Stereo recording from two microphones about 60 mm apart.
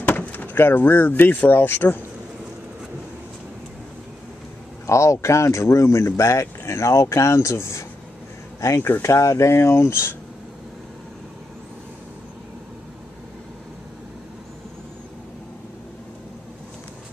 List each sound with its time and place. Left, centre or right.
0.0 s speech: left
4.8 s speech: left